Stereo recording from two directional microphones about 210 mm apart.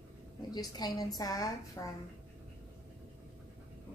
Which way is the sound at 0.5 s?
20° left (ahead or behind).